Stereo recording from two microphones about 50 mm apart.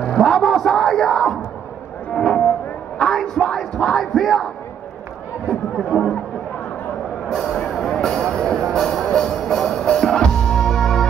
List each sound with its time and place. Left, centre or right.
0.0 s speech: centre
2.1 s music: centre
3.0 s speech: centre
7.2 s music: centre